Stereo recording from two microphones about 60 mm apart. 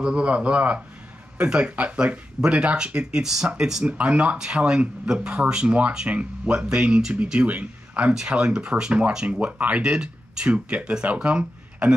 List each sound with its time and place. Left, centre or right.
0.0 s speech: centre